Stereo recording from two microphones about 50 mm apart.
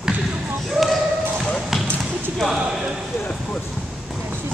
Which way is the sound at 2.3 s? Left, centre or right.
Centre.